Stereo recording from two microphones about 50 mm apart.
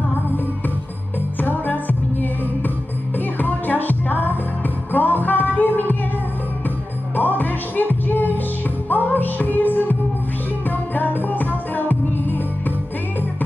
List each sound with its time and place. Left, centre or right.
1.4 s music: left
3.3 s music: left
7.2 s music: left
11.0 s music: left